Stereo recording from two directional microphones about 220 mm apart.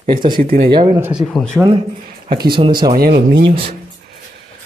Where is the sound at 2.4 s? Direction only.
20° right (ahead or behind).